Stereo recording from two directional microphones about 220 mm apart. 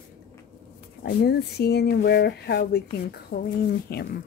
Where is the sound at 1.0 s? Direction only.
45° left (ahead or behind).